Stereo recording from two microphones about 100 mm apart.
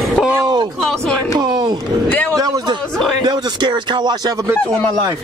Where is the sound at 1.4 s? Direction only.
40° right (ahead or behind).